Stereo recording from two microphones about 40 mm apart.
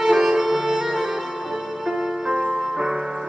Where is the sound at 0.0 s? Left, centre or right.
Centre.